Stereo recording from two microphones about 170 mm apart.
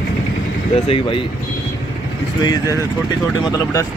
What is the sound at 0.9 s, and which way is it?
Speech, 30° left (ahead or behind).